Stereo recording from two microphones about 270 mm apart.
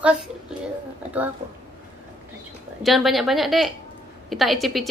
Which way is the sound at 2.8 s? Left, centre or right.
Centre.